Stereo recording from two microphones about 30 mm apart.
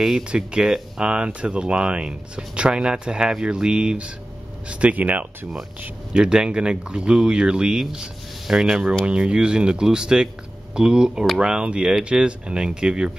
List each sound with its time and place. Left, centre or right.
0.3 s speech: right
4.6 s speech: right
4.9 s speech: right
6.1 s speech: right
9.0 s speech: right
12.0 s speech: right